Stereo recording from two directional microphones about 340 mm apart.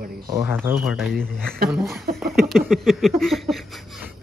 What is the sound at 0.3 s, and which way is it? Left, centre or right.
A man's voice, centre.